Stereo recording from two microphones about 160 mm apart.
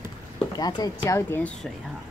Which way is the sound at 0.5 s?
25° left (ahead or behind).